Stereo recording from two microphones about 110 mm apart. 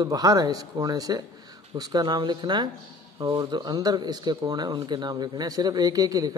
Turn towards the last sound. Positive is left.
turn(degrees=-35)  # may be behind; listen again after turning